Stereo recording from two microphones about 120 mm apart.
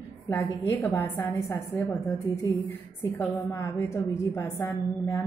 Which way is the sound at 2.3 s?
35° left (ahead or behind).